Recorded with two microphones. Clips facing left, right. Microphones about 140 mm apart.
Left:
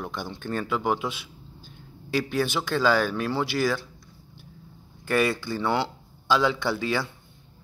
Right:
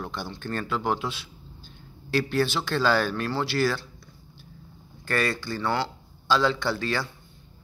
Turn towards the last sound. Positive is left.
turn(degrees=15)  # may be behind; listen again after turning